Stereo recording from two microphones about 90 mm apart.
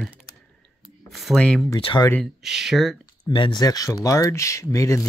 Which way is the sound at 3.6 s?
45° left (ahead or behind).